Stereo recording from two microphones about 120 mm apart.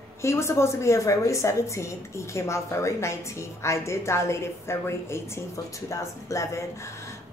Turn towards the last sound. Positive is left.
turn(degrees=25)  # may be behind; listen again after turning